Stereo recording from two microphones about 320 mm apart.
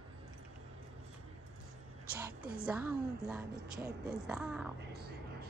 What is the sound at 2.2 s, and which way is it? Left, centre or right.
A woman's voice, centre.